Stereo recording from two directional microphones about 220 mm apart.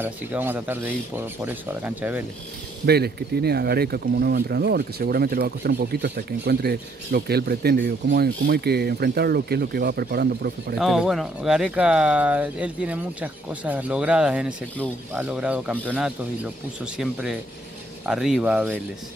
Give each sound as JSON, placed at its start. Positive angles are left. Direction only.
{"t": 0.0, "sound": "speech", "side_deg": -10}
{"t": 2.9, "sound": "speech", "side_deg": -45}
{"t": 10.8, "sound": "speech", "side_deg": 0}
{"t": 16.8, "sound": "speech", "side_deg": -5}